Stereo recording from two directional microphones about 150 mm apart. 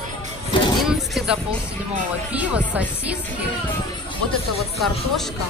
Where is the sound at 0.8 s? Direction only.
5° right (ahead or behind).